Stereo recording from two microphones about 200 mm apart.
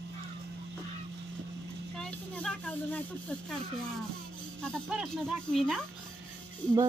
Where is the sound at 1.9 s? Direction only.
5° left (ahead or behind).